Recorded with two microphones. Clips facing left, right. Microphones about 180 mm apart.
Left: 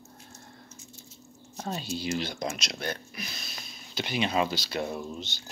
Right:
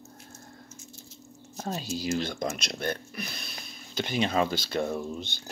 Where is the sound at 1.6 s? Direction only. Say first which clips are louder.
Right 1 dB; 40° right (ahead or behind).